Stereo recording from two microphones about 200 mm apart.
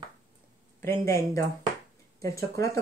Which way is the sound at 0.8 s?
15° left (ahead or behind).